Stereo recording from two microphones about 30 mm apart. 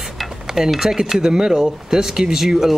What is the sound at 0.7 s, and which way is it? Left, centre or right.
Speech, centre.